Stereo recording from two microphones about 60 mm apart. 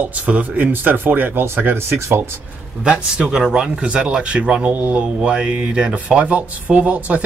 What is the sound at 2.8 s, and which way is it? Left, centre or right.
A man's voice, centre.